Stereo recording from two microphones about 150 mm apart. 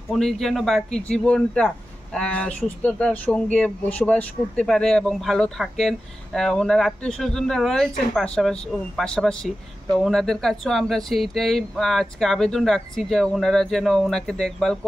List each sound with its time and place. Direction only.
0.1 s speech: 5° left (ahead or behind)